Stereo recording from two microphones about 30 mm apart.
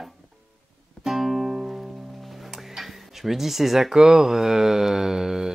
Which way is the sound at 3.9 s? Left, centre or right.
Centre.